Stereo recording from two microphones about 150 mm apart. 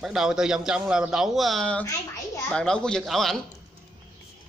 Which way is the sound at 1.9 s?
20° left (ahead or behind).